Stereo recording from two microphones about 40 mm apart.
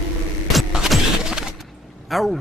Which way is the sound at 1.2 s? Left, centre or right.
Centre.